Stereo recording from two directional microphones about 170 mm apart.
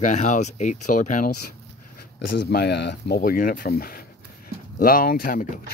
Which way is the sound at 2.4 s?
70° left (ahead or behind).